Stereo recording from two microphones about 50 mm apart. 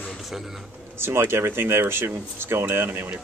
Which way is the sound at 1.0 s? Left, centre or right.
Right.